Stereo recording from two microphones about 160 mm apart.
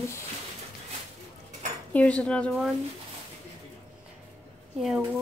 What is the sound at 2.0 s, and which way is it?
Speech, 10° left (ahead or behind).